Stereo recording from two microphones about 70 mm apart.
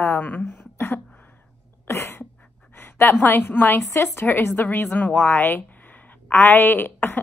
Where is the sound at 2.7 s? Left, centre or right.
Left.